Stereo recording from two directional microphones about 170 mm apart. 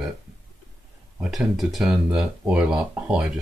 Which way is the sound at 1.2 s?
Centre (ahead or behind).